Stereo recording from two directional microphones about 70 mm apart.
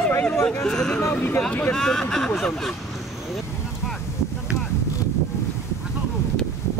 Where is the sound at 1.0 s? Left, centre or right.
Left.